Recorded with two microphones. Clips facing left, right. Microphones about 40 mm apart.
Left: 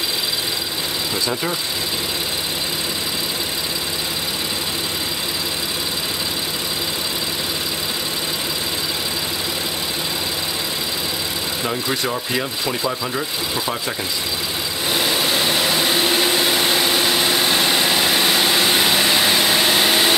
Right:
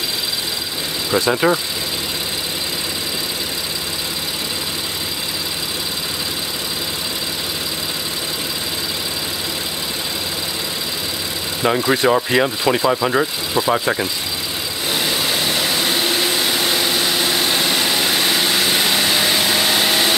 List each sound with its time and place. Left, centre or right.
1.3 s speech: right
11.6 s speech: right
14.9 s a sound: centre